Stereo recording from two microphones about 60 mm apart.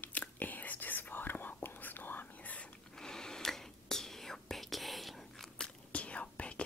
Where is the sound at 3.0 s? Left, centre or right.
Centre.